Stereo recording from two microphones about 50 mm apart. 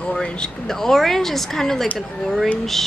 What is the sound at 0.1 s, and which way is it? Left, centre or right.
Speech, centre.